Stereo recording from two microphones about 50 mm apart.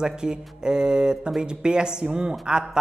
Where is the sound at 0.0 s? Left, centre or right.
Centre.